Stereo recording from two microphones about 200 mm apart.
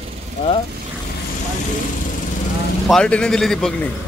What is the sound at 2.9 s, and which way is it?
Speech, 5° left (ahead or behind).